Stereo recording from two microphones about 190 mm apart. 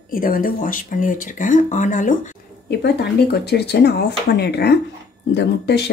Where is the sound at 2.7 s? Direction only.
60° left (ahead or behind).